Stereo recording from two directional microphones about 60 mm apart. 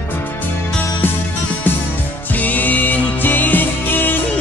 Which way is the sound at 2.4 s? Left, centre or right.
Left.